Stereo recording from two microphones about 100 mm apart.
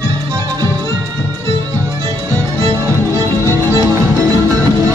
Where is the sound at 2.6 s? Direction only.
30° right (ahead or behind).